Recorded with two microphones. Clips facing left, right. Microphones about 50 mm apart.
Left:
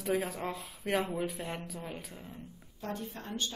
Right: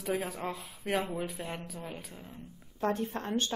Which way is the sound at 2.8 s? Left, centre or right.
Right.